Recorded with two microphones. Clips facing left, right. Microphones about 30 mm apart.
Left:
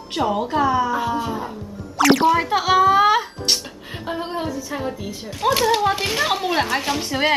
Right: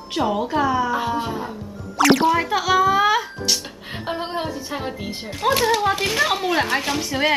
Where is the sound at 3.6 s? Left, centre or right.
Right.